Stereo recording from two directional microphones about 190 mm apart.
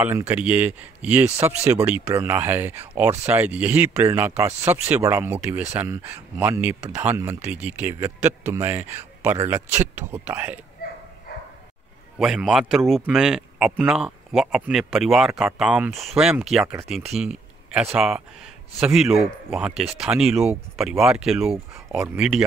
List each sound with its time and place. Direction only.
0.3 s speech: 10° right (ahead or behind)
12.2 s speech: centre (ahead or behind)